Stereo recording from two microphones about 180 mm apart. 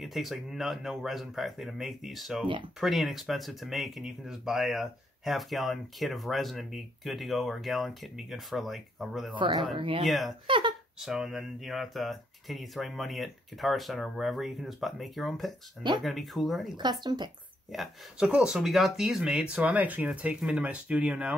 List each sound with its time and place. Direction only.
0.0 s speech: centre (ahead or behind)
9.3 s speech: 25° right (ahead or behind)
10.0 s speech: centre (ahead or behind)
10.4 s speech: 25° right (ahead or behind)
11.0 s speech: centre (ahead or behind)
17.0 s speech: 25° right (ahead or behind)
17.6 s speech: centre (ahead or behind)